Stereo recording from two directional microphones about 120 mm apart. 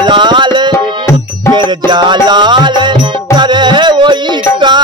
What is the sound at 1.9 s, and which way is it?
Music, 40° right (ahead or behind).